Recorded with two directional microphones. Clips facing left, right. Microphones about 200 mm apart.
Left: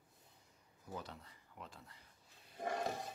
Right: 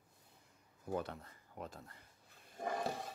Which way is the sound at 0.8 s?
55° right (ahead or behind).